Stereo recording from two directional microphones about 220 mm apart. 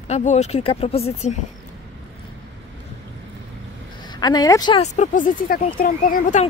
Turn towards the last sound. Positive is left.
turn(degrees=40)  # may be behind; listen again after turning